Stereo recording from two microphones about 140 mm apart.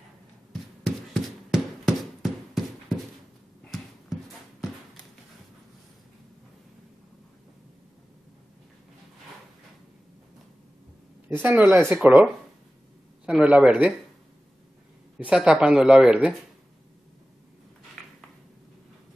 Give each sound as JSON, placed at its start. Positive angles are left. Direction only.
{"t": 0.5, "sound": "a sound", "side_deg": 0}
{"t": 11.4, "sound": "speech", "side_deg": -15}
{"t": 11.8, "sound": "speech", "side_deg": -5}
{"t": 15.1, "sound": "speech", "side_deg": -5}